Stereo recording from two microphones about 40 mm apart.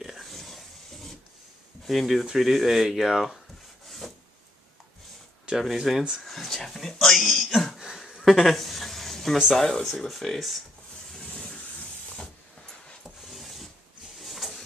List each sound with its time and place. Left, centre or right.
0.0 s a sound: centre
1.9 s speech: centre
4.0 s rub: centre
5.8 s speech: centre
6.2 s speech: centre
8.0 s a sound: centre
9.6 s speech: centre
11.1 s vehicle: centre
13.2 s mechanisms: centre
14.1 s a sound: centre